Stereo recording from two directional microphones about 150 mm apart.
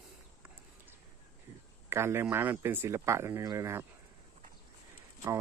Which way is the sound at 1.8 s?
15° right (ahead or behind).